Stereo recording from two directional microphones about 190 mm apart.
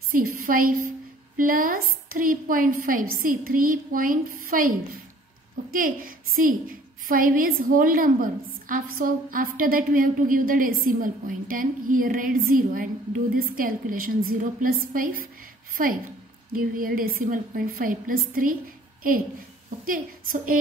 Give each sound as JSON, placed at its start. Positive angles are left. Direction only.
{"t": 0.1, "sound": "a woman's voice", "side_deg": -50}